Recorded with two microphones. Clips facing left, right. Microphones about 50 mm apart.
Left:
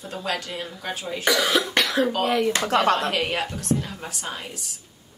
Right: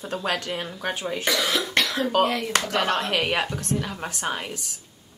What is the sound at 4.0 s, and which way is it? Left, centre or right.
Speech, right.